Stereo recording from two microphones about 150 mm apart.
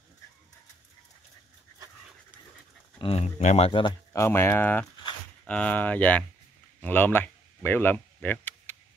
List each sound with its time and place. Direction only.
3.0 s speech: 40° left (ahead or behind)
4.1 s speech: 15° left (ahead or behind)
6.8 s a sound: 15° left (ahead or behind)